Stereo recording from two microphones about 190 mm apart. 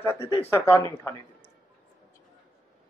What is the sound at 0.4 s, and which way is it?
Speech, 10° left (ahead or behind).